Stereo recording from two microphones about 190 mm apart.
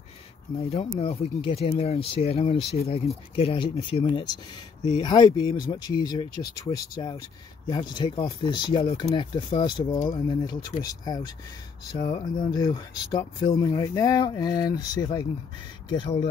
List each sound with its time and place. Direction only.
0.6 s speech: 30° left (ahead or behind)